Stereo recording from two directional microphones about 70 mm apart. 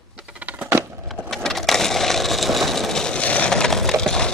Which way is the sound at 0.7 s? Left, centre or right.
Right.